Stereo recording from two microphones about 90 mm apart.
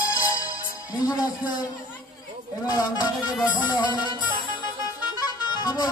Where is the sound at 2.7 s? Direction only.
50° left (ahead or behind).